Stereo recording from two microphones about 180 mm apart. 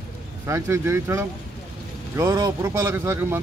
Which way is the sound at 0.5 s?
15° right (ahead or behind).